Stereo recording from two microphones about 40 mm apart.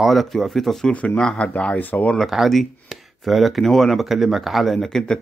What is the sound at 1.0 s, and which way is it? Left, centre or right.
Speech, left.